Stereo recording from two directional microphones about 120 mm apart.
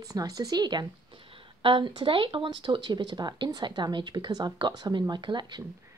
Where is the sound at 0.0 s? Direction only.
30° right (ahead or behind).